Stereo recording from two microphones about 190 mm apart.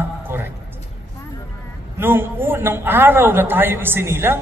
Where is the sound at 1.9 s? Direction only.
10° right (ahead or behind).